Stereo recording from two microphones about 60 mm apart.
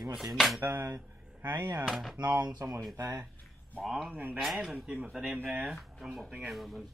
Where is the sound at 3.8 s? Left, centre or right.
Centre.